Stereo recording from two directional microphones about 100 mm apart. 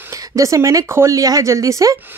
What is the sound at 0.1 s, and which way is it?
Speech, 35° right (ahead or behind).